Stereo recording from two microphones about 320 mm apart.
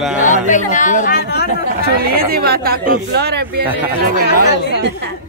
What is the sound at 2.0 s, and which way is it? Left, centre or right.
Speech, right.